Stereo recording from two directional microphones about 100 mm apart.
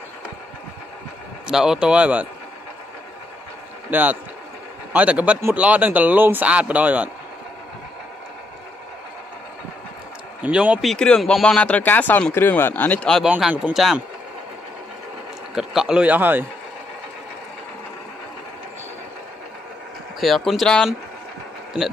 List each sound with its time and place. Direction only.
1.5 s speech: 5° right (ahead or behind)
3.9 s speech: 15° right (ahead or behind)
10.4 s speech: 10° right (ahead or behind)
10.8 s speech: 5° left (ahead or behind)
13.6 s speech: 15° right (ahead or behind)
15.5 s speech: 5° right (ahead or behind)
20.2 s speech: centre (ahead or behind)